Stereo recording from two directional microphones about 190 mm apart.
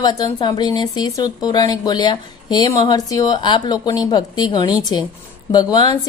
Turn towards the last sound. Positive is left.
turn(degrees=20)  # may be behind; listen again after turning